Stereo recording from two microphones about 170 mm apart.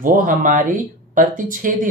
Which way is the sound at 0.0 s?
50° right (ahead or behind).